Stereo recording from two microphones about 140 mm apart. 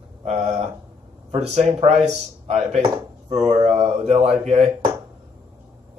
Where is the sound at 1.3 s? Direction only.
45° right (ahead or behind).